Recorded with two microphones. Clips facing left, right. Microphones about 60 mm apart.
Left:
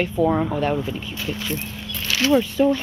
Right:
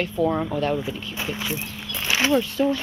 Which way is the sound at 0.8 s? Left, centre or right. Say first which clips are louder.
Left 1 dB; centre.